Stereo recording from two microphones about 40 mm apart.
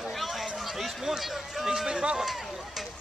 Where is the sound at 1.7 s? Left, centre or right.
Centre.